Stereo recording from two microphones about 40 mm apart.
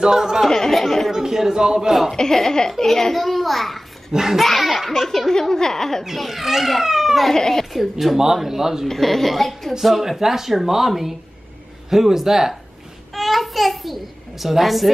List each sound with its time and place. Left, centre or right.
0.0 s a man's voice: centre
0.5 s speech: centre
1.1 s a man's voice: centre
2.1 s speech: centre
4.1 s a man's voice: centre
4.4 s speech: centre
5.3 s speech: centre
6.1 s speech: centre
7.2 s speech: centre
7.7 s a man's voice: centre
8.8 s a man's voice: centre
13.1 s a child's voice: centre